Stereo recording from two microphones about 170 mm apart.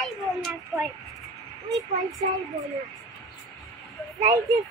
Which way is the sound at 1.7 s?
20° right (ahead or behind).